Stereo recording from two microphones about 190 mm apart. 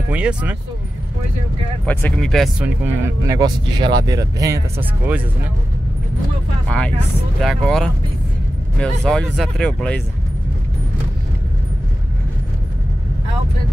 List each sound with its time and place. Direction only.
0.1 s speech: 5° right (ahead or behind)
1.9 s speech: 10° left (ahead or behind)
2.8 s speech: 15° right (ahead or behind)
7.3 s speech: centre (ahead or behind)